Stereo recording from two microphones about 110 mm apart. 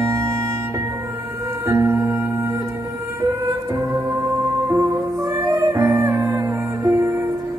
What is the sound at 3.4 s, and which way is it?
Music, 30° right (ahead or behind).